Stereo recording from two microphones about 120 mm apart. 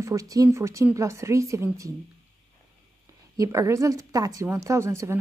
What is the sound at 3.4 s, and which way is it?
A woman's voice, 25° right (ahead or behind).